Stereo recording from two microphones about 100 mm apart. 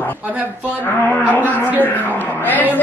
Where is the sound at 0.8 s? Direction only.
20° left (ahead or behind).